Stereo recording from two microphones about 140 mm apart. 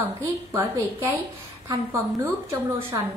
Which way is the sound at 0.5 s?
20° right (ahead or behind).